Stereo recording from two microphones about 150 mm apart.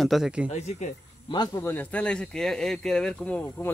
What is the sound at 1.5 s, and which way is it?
Speech, 15° left (ahead or behind).